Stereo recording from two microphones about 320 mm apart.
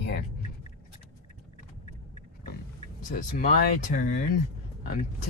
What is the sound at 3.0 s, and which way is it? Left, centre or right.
Speech, left.